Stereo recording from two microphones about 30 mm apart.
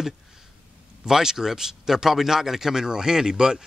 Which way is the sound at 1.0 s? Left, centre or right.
Centre.